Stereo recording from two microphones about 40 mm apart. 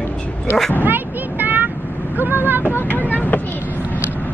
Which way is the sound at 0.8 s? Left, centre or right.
Right.